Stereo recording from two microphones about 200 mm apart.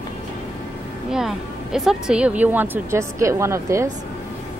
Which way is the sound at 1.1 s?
5° right (ahead or behind).